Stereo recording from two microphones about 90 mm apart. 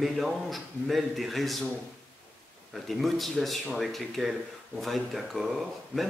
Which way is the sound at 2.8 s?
Centre (ahead or behind).